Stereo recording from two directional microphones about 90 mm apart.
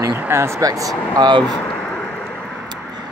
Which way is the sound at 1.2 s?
55° right (ahead or behind).